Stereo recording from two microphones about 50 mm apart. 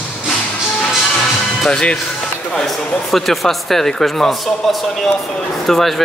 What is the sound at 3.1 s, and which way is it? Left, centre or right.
A man's voice, centre.